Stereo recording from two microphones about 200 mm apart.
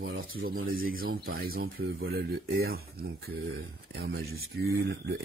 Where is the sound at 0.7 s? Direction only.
45° right (ahead or behind).